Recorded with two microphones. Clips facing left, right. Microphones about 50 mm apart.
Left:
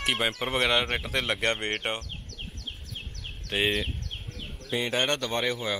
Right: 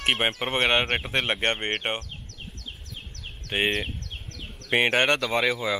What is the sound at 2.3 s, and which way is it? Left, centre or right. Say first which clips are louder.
Bird: left 1 dB; left.